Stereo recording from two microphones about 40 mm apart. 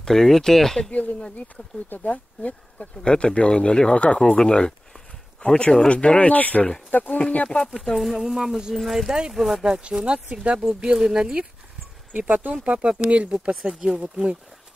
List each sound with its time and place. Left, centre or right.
0.0 s speech: centre
1.9 s speech: left
2.8 s speech: left
5.9 s speech: left
7.4 s speech: centre
7.8 s speech: centre
8.1 s speech: centre
9.6 s speech: centre
12.1 s speech: right
13.7 s speech: right